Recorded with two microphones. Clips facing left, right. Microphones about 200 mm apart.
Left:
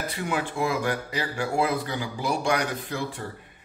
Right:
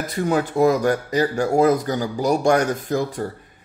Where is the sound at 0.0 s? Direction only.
40° right (ahead or behind).